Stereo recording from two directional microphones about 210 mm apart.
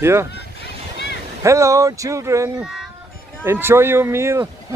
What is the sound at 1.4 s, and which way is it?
Speech, 15° right (ahead or behind).